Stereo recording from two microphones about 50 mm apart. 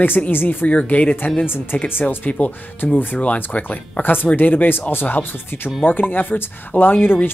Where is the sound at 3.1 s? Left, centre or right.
Left.